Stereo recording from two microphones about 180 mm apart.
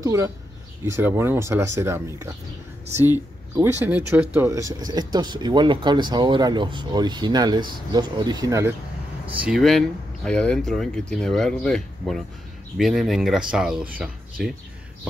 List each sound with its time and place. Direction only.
0.0 s speech: 15° right (ahead or behind)
9.3 s speech: 5° right (ahead or behind)